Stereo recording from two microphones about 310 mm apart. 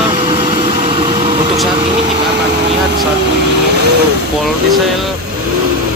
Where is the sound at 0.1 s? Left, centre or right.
Centre.